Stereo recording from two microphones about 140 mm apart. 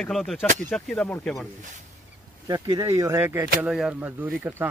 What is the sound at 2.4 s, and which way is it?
Speech, 25° right (ahead or behind).